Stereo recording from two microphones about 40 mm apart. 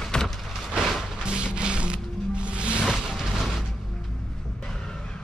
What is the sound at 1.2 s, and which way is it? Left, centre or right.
Music, right.